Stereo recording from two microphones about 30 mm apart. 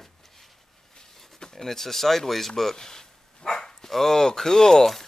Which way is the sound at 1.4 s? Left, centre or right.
Centre.